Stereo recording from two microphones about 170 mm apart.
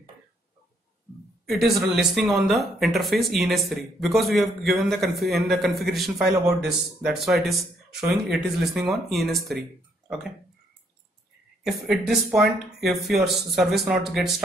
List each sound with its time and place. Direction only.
1.4 s speech: centre (ahead or behind)
11.6 s speech: centre (ahead or behind)